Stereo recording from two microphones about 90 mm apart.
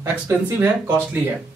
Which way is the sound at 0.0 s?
30° right (ahead or behind).